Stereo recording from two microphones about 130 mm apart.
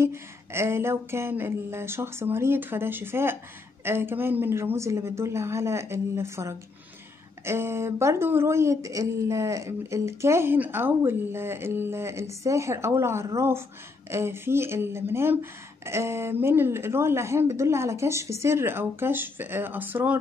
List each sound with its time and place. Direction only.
0.0 s speech: 20° right (ahead or behind)